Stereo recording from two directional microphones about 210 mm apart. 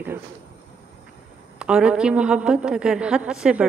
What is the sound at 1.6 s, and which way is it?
A woman's voice, 5° right (ahead or behind).